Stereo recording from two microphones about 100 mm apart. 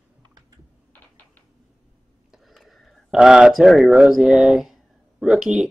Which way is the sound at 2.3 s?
Centre (ahead or behind).